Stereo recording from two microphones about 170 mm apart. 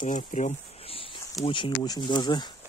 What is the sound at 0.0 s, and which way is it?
Speech, 45° left (ahead or behind).